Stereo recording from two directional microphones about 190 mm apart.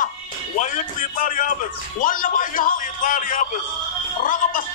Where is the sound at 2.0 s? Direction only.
45° left (ahead or behind).